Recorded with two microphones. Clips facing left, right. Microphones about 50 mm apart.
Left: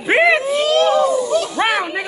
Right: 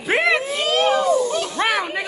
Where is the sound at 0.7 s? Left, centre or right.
Right.